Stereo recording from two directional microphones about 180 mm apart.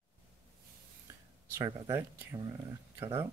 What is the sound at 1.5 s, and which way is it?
Speech, 15° right (ahead or behind).